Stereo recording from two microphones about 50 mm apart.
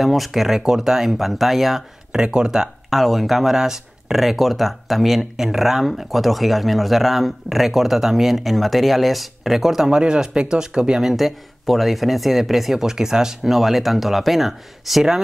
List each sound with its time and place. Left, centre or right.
0.0 s speech: centre
2.1 s speech: centre
2.9 s speech: centre